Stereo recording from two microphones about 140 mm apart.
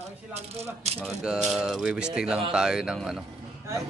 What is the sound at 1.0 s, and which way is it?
A man's voice, 5° right (ahead or behind).